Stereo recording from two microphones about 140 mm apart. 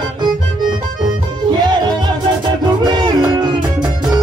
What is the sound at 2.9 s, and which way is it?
Music, 30° right (ahead or behind).